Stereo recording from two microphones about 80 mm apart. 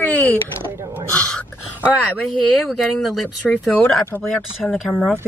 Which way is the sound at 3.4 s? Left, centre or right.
Centre.